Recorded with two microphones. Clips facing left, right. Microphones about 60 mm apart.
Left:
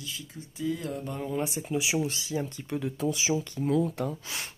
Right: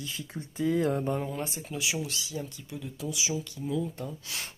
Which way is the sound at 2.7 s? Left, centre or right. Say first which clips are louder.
Left 8 dB; left.